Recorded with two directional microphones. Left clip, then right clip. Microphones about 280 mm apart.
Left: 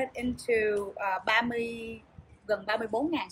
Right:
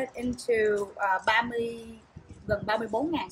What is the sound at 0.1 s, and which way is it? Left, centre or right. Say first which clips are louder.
Speech: right 1 dB; centre.